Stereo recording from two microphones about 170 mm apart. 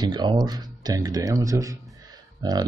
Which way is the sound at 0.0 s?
25° right (ahead or behind).